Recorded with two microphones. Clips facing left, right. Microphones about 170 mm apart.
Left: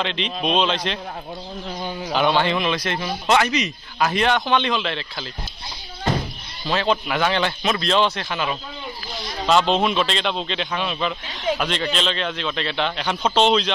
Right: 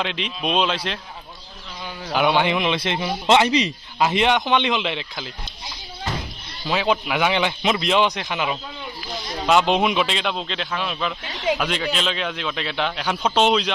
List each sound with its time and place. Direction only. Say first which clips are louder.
0.0 s a man's voice: left 2 dB; 5° right (ahead or behind)
2.1 s a man's voice: right 1 dB; 10° right (ahead or behind)
2.7 s a man's voice: right 1 dB; 25° right (ahead or behind)
6.7 s a man's voice: even; 10° right (ahead or behind)